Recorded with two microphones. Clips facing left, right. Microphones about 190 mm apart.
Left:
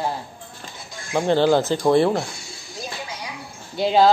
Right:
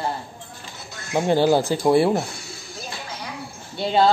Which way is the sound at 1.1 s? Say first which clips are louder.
Even; 10° right (ahead or behind).